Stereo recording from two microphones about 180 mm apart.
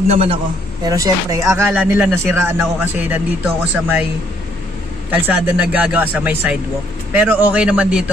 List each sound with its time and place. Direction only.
0.1 s a man's voice: 35° right (ahead or behind)
0.8 s speech: 20° right (ahead or behind)
5.1 s speech: 10° right (ahead or behind)